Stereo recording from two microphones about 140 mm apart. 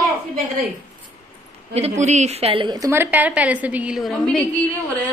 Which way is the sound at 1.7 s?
50° right (ahead or behind).